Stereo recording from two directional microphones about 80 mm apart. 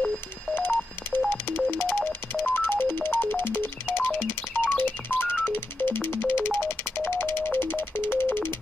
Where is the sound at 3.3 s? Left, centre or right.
Left.